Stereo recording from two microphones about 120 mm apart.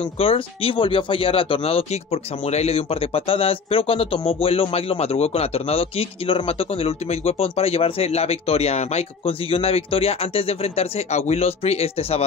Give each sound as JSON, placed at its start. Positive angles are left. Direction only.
{"t": 0.2, "sound": "speech", "side_deg": 50}